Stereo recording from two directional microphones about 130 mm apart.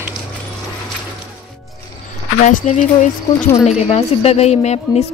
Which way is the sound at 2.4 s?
70° left (ahead or behind).